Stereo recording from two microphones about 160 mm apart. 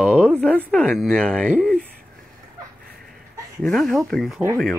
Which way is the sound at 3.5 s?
5° left (ahead or behind).